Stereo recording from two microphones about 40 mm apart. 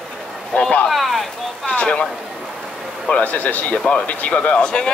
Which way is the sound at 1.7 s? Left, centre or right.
Left.